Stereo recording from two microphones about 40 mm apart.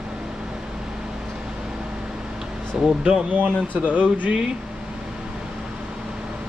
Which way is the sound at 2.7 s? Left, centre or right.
Centre.